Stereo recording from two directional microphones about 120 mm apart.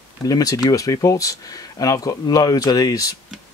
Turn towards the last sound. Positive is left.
turn(degrees=30)  # may be behind; listen again after turning